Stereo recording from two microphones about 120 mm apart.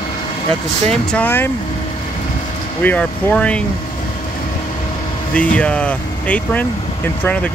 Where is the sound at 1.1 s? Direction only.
15° left (ahead or behind).